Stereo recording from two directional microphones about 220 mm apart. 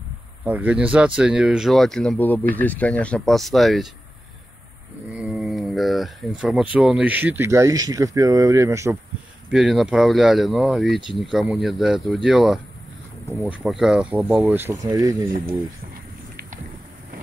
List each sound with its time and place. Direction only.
0.5 s speech: 5° right (ahead or behind)
5.1 s speech: centre (ahead or behind)
9.5 s speech: centre (ahead or behind)